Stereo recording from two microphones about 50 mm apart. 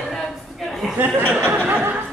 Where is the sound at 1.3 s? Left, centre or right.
Right.